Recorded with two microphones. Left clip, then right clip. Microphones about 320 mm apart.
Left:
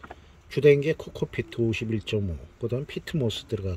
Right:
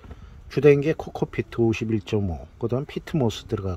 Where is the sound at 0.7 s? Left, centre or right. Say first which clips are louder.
Right 2 dB; right.